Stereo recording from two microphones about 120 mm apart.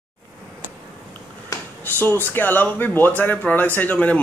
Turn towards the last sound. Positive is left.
turn(degrees=10)  # may be behind; listen again after turning